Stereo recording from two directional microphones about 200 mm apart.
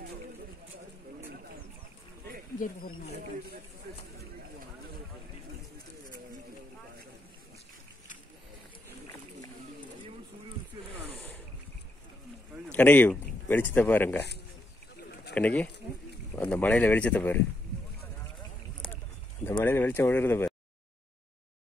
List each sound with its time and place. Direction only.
12.7 s a man's voice: 10° left (ahead or behind)
15.0 s a sound: 55° left (ahead or behind)
15.3 s speech: 5° left (ahead or behind)
19.4 s speech: 10° left (ahead or behind)